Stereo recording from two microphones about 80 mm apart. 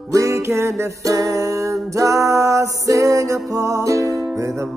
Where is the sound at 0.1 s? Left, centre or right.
Right.